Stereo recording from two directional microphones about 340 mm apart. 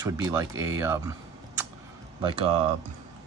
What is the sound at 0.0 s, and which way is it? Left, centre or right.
Speech, centre.